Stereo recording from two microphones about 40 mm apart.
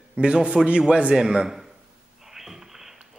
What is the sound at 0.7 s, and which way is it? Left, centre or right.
Speech, right.